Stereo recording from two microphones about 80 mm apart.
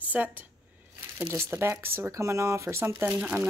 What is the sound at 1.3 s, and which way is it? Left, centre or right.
A woman's voice, right.